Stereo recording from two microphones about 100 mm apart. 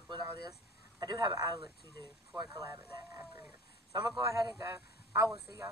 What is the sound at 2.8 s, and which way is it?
Speech, 25° right (ahead or behind).